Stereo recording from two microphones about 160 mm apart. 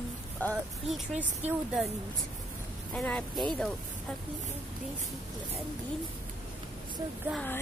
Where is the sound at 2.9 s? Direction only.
10° left (ahead or behind).